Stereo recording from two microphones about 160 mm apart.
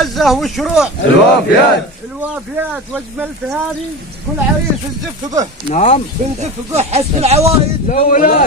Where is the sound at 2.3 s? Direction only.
10° right (ahead or behind).